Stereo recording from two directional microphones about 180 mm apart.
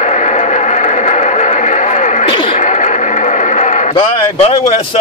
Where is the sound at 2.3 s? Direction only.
30° left (ahead or behind).